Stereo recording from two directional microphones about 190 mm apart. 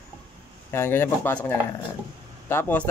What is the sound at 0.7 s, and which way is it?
Speech, 10° left (ahead or behind).